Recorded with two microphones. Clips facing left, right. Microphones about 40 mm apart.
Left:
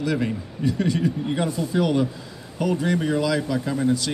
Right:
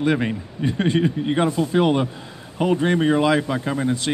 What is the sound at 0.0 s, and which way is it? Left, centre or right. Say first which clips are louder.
Speech: right 3 dB; right.